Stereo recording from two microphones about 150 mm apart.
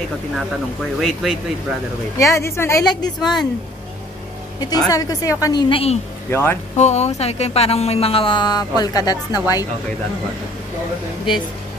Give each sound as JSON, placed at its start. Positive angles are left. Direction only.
{"t": 1.0, "sound": "speech", "side_deg": 0}
{"t": 2.1, "sound": "a woman's voice", "side_deg": 20}
{"t": 3.2, "sound": "speech", "side_deg": 0}
{"t": 4.6, "sound": "a woman's voice", "side_deg": 25}
{"t": 6.3, "sound": "speech", "side_deg": 15}
{"t": 6.8, "sound": "speech", "side_deg": 45}